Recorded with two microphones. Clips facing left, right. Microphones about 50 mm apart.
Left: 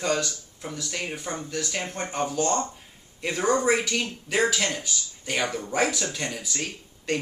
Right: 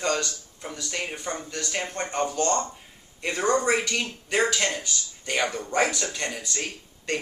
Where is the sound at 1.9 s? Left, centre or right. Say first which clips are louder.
Right 1 dB; centre.